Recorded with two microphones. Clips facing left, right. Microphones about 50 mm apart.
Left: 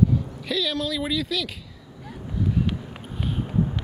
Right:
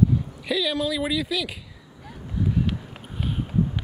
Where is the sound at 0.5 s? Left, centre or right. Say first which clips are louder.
Right 2 dB; centre.